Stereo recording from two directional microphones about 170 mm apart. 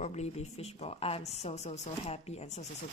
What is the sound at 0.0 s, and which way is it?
A woman's voice, 40° left (ahead or behind).